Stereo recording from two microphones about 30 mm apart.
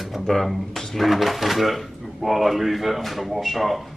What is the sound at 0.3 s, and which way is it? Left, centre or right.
A man's voice, centre.